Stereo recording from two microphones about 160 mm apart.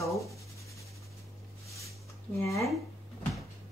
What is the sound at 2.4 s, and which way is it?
Speech, 20° left (ahead or behind).